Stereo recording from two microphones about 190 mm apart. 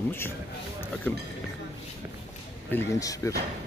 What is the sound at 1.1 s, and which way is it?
Speech, 10° left (ahead or behind).